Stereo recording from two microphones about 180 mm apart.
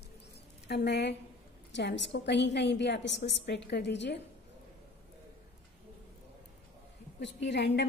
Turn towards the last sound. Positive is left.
turn(degrees=70)  # may be behind; listen again after turning